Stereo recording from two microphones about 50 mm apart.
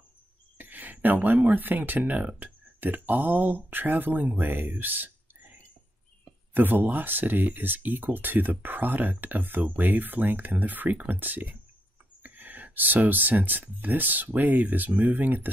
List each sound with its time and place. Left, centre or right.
0.6 s speech: right